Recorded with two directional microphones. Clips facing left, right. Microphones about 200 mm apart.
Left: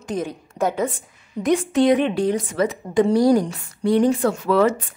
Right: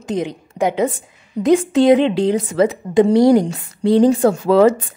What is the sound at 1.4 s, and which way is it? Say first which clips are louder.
A woman's voice: right 5 dB; 35° right (ahead or behind).